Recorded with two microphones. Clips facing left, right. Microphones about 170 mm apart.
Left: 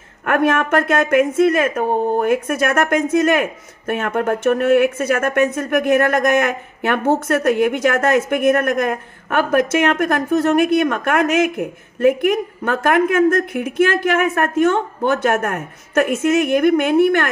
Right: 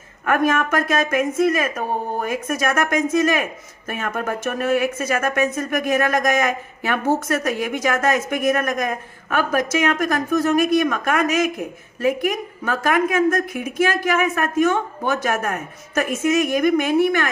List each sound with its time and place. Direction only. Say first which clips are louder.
0.3 s speech: left 3 dB; 65° left (ahead or behind)